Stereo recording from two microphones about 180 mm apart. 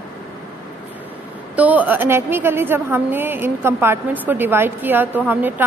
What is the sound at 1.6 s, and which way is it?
A woman's voice, 10° right (ahead or behind).